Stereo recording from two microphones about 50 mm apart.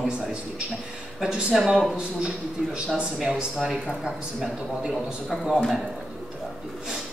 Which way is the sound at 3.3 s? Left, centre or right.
Centre.